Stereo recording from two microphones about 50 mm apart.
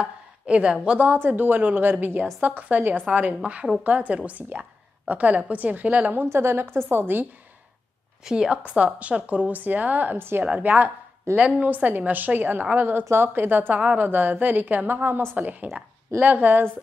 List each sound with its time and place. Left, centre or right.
0.0 s a sound: right
0.9 s a woman's voice: right
6.1 s a woman's voice: right
8.2 s a woman's voice: centre
8.6 s a woman's voice: right